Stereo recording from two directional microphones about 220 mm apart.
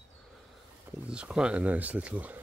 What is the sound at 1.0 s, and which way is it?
Speech, 5° right (ahead or behind).